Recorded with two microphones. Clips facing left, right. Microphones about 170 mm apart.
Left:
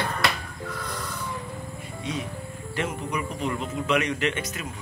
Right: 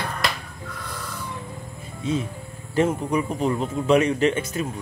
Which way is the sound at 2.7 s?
30° right (ahead or behind).